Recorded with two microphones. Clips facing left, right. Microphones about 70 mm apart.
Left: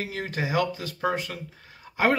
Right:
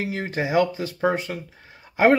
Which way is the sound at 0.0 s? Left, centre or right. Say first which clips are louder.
Right 4 dB; right.